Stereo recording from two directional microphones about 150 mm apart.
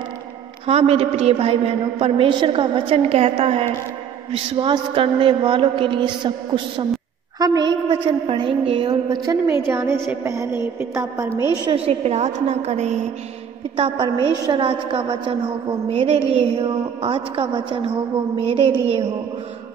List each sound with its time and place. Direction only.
0.7 s a woman's voice: 45° right (ahead or behind)
7.3 s a sound: 25° right (ahead or behind)
7.9 s a woman's voice: 35° right (ahead or behind); by 11.2 s 20° right (ahead or behind)
11.7 s a woman's voice: 45° right (ahead or behind)
13.7 s a woman's voice: 35° right (ahead or behind)